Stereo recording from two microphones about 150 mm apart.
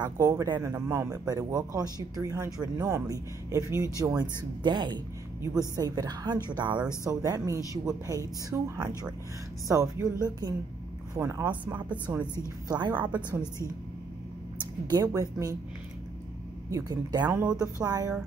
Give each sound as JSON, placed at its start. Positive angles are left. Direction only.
{"t": 0.0, "sound": "speech", "side_deg": -20}
{"t": 4.2, "sound": "speech", "side_deg": -30}
{"t": 11.1, "sound": "speech", "side_deg": -15}
{"t": 12.6, "sound": "speech", "side_deg": -30}
{"t": 14.9, "sound": "speech", "side_deg": -20}
{"t": 16.7, "sound": "speech", "side_deg": -25}
{"t": 17.3, "sound": "speech", "side_deg": -10}
{"t": 17.6, "sound": "speech", "side_deg": -25}